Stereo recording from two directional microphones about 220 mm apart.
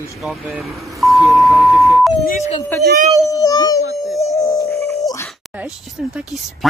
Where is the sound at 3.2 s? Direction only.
15° left (ahead or behind).